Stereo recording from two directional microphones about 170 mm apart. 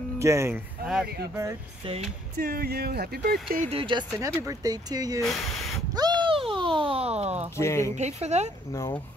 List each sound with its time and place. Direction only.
0.2 s speech: 15° right (ahead or behind)
2.4 s speech: 65° right (ahead or behind)
3.7 s speech: 30° right (ahead or behind)
4.2 s speech: 20° right (ahead or behind)
5.2 s speech: centre (ahead or behind)
5.9 s a sound: 25° right (ahead or behind)
7.5 s speech: 15° left (ahead or behind)
8.0 s speech: 40° right (ahead or behind)
8.7 s speech: 15° left (ahead or behind)